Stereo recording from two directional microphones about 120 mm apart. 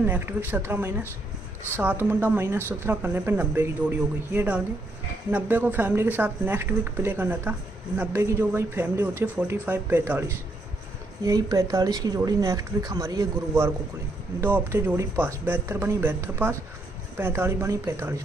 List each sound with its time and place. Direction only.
0.0 s speech: 15° right (ahead or behind)
11.2 s speech: 30° right (ahead or behind)
14.4 s speech: 20° right (ahead or behind)